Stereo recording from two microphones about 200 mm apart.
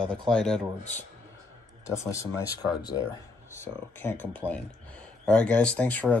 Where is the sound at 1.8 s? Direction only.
15° left (ahead or behind).